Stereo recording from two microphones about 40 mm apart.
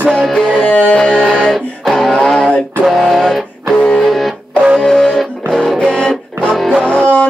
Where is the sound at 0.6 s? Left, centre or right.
Left.